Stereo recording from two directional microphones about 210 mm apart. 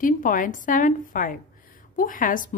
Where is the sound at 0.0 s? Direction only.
40° left (ahead or behind).